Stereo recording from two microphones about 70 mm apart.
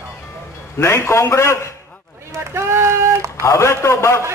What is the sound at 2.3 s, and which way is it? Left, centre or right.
Speech, right.